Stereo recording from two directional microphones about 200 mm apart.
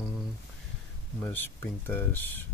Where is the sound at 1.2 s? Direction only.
10° left (ahead or behind).